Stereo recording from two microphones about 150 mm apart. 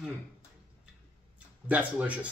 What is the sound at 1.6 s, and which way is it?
Speech, 10° right (ahead or behind).